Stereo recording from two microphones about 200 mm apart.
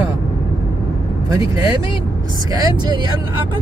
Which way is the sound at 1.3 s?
15° right (ahead or behind).